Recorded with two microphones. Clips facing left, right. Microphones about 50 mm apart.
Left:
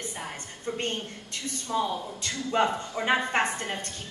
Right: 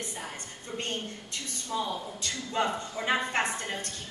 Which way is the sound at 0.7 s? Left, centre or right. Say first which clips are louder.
Left 5 dB; left.